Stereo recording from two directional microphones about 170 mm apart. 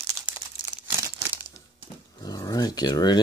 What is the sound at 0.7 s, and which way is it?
Crumpling, 15° right (ahead or behind).